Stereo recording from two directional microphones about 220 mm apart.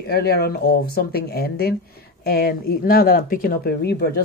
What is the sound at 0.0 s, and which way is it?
Speech, 45° left (ahead or behind).